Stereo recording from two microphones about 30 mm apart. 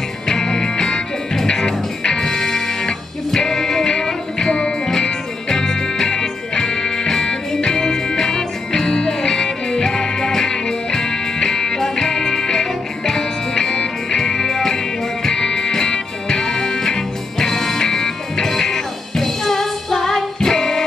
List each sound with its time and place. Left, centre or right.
0.3 s music: left
2.2 s music: centre
3.9 s music: left
15.2 s music: left